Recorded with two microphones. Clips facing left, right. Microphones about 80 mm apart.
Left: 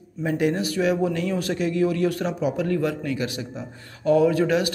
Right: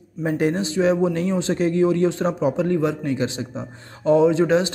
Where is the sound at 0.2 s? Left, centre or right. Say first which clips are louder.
Right 2 dB; right.